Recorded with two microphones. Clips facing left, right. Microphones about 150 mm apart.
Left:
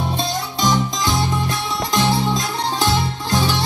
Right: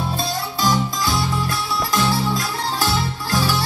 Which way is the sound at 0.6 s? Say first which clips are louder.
Left 1 dB; 20° left (ahead or behind).